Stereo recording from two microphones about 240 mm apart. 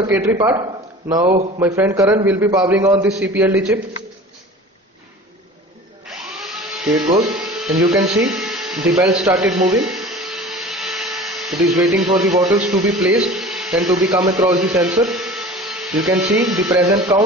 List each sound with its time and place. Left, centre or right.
0.1 s a man's voice: centre
1.6 s a man's voice: centre
6.0 s a sound: centre
9.0 s speech: centre
9.8 s vacuum cleaner: centre
12.5 s speech: centre
14.2 s a man's voice: centre
14.7 s speech: centre
17.1 s a man's voice: centre